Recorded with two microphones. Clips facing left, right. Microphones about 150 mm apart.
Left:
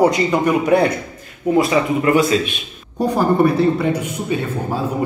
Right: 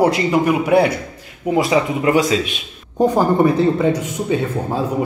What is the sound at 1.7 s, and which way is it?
A man's voice, 15° right (ahead or behind).